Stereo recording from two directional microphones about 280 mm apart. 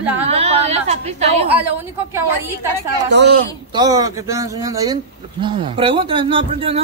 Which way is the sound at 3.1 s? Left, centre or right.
Right.